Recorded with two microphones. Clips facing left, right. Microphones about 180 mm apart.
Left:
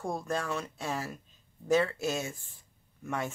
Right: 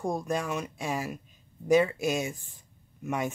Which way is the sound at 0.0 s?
15° right (ahead or behind).